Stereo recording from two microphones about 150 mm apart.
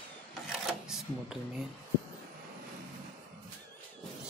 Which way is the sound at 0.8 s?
5° right (ahead or behind).